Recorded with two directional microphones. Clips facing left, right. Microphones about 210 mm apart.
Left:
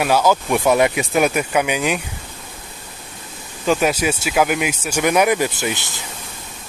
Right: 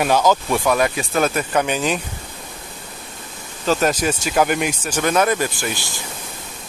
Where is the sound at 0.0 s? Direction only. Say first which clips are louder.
Even; 10° left (ahead or behind).